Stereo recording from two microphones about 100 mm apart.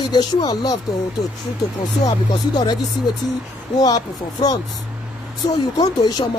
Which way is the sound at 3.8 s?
40° left (ahead or behind).